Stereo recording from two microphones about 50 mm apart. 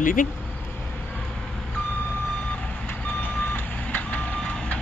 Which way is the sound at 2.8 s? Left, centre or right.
Left.